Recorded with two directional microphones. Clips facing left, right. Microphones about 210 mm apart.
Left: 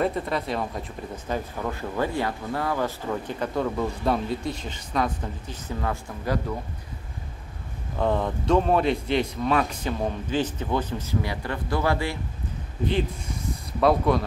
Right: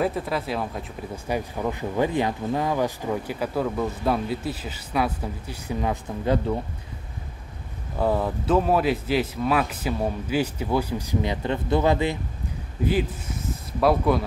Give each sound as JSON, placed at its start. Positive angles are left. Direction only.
{"t": 0.0, "sound": "speech", "side_deg": -5}
{"t": 8.0, "sound": "speech", "side_deg": -5}
{"t": 12.8, "sound": "speech", "side_deg": -5}